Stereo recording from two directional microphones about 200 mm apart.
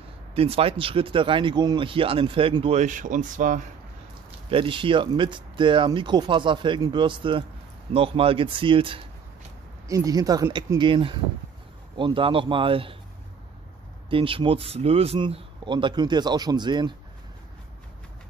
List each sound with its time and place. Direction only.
0.3 s speech: 30° right (ahead or behind)
4.5 s speech: 25° right (ahead or behind)
14.0 s speech: 25° right (ahead or behind)